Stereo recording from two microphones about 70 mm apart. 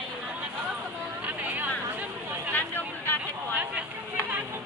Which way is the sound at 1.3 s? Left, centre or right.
Right.